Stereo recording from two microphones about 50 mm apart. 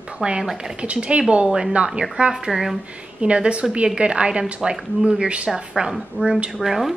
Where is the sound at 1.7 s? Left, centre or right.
Right.